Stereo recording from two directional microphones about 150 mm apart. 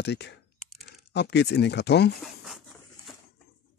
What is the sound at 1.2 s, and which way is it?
Speech, 90° left.